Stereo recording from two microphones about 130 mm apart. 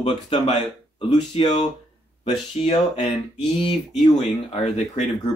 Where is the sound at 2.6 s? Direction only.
50° left (ahead or behind).